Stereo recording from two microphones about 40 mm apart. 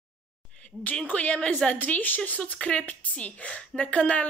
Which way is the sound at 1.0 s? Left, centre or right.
Left.